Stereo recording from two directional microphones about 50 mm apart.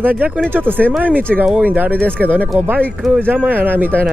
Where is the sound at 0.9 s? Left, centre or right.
Right.